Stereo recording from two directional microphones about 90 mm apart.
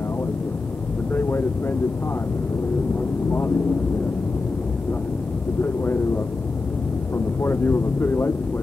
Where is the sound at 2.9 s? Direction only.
25° left (ahead or behind).